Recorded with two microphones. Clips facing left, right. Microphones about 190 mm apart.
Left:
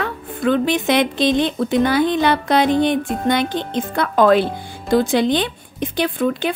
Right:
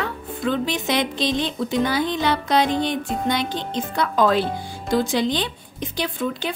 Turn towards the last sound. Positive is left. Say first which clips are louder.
# left 6 dB
turn(degrees=55)  # may be behind; listen again after turning